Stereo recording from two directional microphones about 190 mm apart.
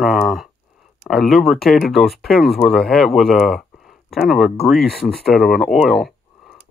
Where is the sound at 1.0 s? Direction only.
Centre (ahead or behind).